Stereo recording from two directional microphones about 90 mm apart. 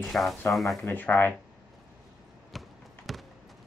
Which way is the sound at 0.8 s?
20° left (ahead or behind).